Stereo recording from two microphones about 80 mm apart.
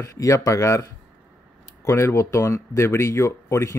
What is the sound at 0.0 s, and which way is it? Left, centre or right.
Speech, left.